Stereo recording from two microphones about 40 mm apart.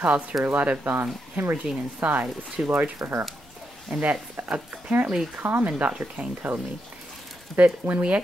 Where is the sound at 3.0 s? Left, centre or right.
Right.